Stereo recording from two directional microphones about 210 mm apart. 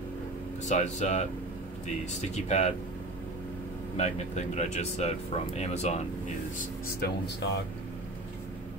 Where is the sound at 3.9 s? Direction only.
30° left (ahead or behind).